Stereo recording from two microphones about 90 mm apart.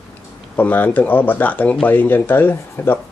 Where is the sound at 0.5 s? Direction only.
20° left (ahead or behind).